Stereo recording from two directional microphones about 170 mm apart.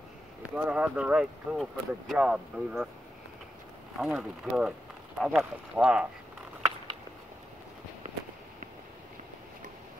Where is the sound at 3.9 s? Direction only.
5° right (ahead or behind).